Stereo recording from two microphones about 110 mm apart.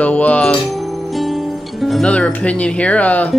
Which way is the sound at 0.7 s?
Centre (ahead or behind).